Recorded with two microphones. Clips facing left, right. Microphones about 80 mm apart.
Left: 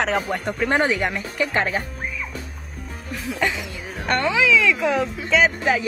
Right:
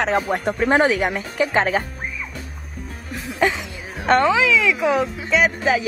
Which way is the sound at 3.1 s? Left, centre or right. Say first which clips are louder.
Right 3 dB; right.